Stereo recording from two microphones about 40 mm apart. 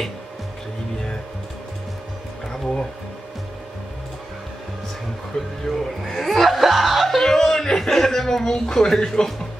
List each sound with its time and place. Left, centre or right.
2.5 s speech: centre
5.3 s speech: centre
5.7 s chuckle: centre
7.2 s speech: centre